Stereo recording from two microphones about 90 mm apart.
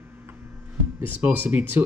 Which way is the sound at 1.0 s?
20° right (ahead or behind).